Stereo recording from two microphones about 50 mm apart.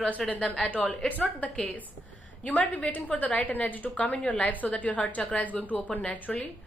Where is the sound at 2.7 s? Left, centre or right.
Left.